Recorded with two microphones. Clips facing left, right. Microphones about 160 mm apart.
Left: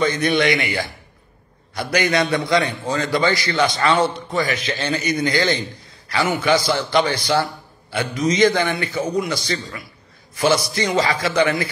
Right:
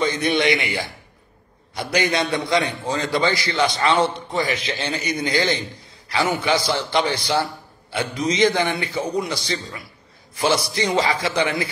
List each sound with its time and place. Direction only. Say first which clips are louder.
0.0 s a man's voice: left 2 dB; 20° right (ahead or behind)
10.4 s a man's voice: left 2 dB; 25° right (ahead or behind)